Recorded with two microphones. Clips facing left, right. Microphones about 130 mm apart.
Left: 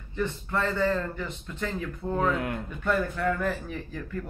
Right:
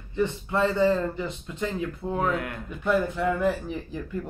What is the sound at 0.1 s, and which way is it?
Speech, 20° right (ahead or behind).